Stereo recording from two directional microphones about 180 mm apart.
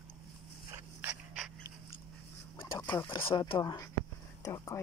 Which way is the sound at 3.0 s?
25° left (ahead or behind).